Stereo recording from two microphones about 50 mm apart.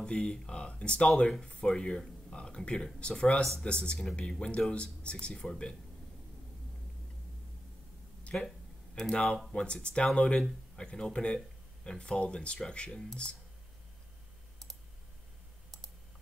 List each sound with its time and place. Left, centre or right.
0.0 s speech: left
8.2 s a sound: left
9.1 s speech: centre